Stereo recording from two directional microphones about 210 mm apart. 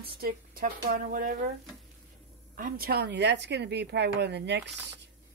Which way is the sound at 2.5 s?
40° right (ahead or behind).